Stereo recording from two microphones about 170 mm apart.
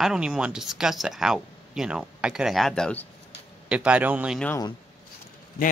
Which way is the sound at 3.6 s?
5° right (ahead or behind).